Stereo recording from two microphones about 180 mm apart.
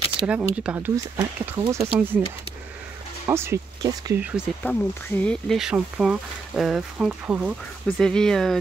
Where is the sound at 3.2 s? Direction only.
15° right (ahead or behind).